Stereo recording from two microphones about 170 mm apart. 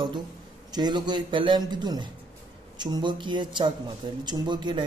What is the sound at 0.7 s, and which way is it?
A man's voice, 25° right (ahead or behind).